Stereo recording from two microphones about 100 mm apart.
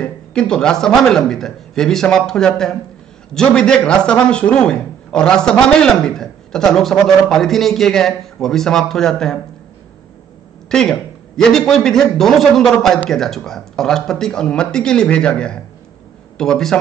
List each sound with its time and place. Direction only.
0.0 s a man's voice: 10° left (ahead or behind)
10.7 s a man's voice: 5° left (ahead or behind)